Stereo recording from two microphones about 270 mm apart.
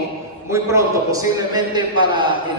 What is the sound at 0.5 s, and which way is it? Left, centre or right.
A man's voice, centre.